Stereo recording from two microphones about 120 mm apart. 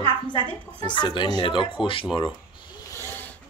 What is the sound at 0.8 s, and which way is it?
Speech, 40° left (ahead or behind).